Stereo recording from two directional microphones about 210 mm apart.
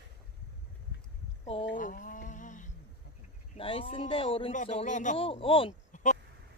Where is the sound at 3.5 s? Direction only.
25° left (ahead or behind).